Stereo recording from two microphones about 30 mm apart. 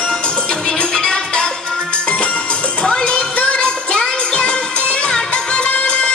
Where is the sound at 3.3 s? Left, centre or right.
Left.